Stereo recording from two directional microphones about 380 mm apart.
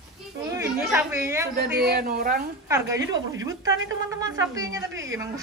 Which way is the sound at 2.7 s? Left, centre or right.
Centre.